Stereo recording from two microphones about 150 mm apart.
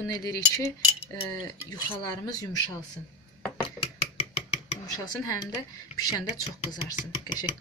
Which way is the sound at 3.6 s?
40° left (ahead or behind).